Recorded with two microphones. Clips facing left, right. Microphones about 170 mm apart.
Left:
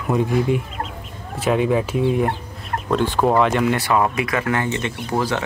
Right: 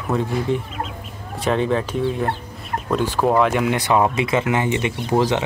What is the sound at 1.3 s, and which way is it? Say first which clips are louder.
Speech: left 1 dB; 5° left (ahead or behind).